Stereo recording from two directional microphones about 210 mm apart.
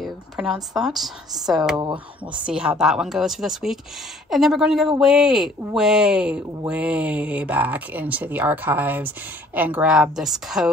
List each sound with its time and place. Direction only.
0.0 s speech: centre (ahead or behind)
1.8 s speech: 20° right (ahead or behind)
2.4 s speech: 5° right (ahead or behind)